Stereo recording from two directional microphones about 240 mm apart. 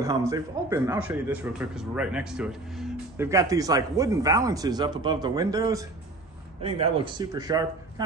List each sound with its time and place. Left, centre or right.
0.0 s speech: centre
3.3 s speech: centre